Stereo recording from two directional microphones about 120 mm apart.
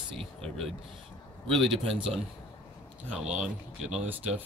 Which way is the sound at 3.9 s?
70° right (ahead or behind).